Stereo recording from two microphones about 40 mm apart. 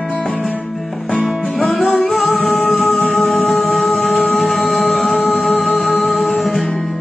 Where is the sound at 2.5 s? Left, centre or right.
Centre.